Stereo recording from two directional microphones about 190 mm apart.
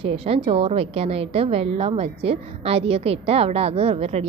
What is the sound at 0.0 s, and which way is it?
A woman's voice, 30° right (ahead or behind).